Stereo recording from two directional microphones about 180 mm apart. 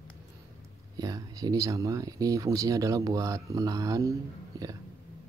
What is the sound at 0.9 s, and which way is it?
Speech, 20° right (ahead or behind).